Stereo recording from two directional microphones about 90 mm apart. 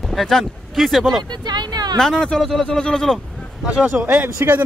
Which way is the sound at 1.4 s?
55° right (ahead or behind).